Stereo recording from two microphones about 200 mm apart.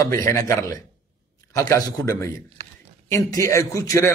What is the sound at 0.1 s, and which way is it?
A man's voice, 15° left (ahead or behind).